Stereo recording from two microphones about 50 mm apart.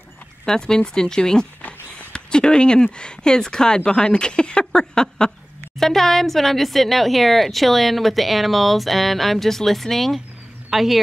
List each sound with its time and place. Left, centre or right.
0.5 s speech: centre
1.6 s a sound: left
2.1 s speech: centre